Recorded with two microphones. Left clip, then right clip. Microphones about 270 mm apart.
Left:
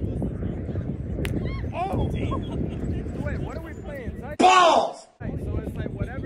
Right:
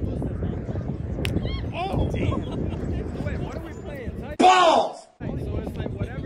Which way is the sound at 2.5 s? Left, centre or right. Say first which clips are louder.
Right 1 dB; right.